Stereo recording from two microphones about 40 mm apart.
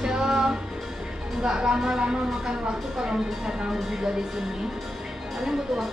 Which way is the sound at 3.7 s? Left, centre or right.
Centre.